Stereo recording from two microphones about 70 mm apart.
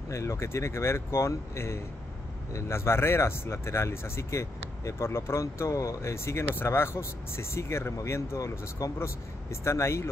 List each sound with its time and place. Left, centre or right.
0.1 s speech: left